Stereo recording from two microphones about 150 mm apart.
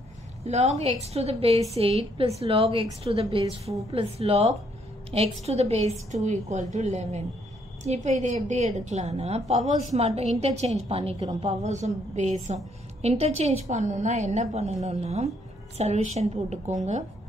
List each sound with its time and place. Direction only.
0.4 s a woman's voice: 45° right (ahead or behind)